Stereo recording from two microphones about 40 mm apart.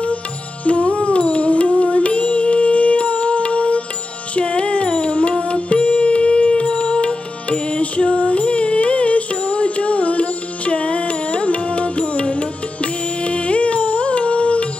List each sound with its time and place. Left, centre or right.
0.7 s music: left